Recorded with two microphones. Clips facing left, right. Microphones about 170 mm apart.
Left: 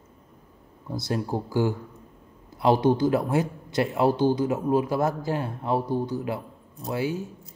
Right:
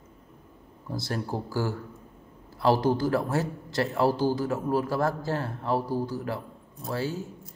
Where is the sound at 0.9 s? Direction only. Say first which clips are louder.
Left 4 dB; centre (ahead or behind).